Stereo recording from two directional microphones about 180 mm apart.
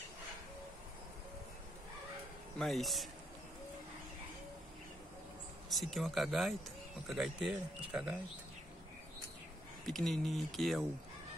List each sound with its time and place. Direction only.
2.6 s speech: centre (ahead or behind)
5.7 s speech: centre (ahead or behind)
9.8 s speech: centre (ahead or behind)